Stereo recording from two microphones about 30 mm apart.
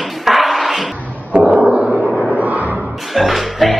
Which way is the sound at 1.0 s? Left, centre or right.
Left.